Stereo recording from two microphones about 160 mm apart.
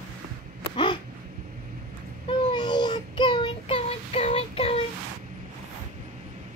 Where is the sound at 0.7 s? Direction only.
30° left (ahead or behind).